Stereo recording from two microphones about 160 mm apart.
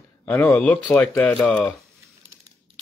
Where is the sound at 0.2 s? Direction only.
10° left (ahead or behind).